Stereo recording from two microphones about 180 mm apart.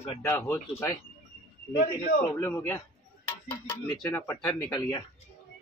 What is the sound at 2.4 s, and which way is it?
Speech, 10° left (ahead or behind).